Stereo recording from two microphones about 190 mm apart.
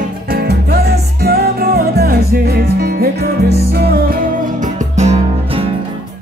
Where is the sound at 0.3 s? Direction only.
55° right (ahead or behind).